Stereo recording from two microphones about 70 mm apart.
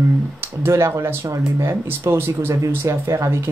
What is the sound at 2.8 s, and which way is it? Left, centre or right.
Speech, right.